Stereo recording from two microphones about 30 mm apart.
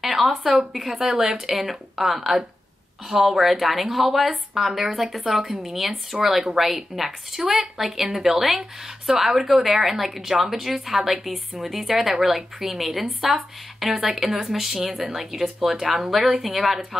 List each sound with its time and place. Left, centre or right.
0.0 s speech: centre
1.6 s a woman's voice: centre